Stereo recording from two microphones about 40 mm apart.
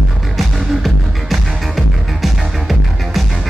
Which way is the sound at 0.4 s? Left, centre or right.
Centre.